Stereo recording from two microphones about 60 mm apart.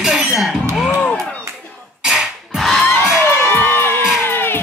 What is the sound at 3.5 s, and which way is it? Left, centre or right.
Crowd, left.